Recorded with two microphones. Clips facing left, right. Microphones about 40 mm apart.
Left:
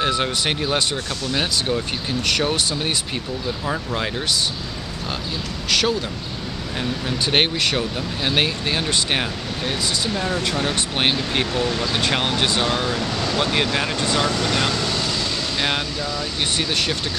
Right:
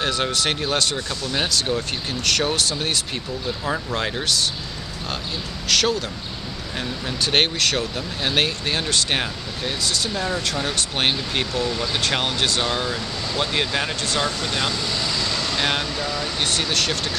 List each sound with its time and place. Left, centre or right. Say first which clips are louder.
0.0 s speech: left 1 dB; centre
5.7 s speech: even; centre
14.7 s speech: left 3 dB; left
15.0 s vehicle: left 1 dB; centre
15.5 s speech: even; centre